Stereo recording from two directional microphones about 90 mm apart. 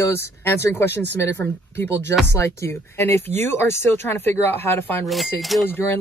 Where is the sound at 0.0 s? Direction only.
30° left (ahead or behind).